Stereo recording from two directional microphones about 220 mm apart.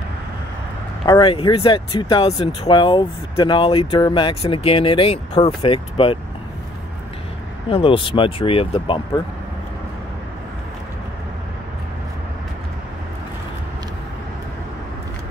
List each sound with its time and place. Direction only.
1.0 s speech: 20° left (ahead or behind)
7.7 s speech: 25° left (ahead or behind)